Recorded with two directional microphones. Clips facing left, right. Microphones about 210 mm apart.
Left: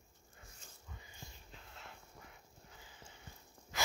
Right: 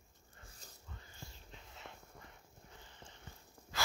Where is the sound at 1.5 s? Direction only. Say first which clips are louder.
Right 2 dB; centre (ahead or behind).